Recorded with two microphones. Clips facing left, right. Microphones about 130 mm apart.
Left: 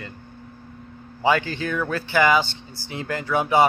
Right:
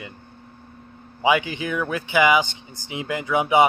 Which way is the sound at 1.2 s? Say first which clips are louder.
Right 1 dB; 15° right (ahead or behind).